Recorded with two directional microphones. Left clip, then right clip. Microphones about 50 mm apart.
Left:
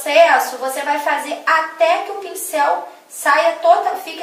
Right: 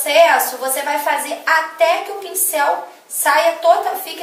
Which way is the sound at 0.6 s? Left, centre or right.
Centre.